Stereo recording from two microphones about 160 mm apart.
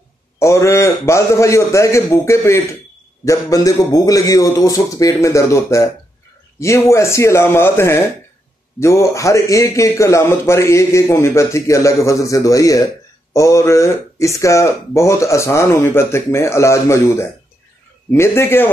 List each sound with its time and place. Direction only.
0.4 s a man's voice: 20° left (ahead or behind)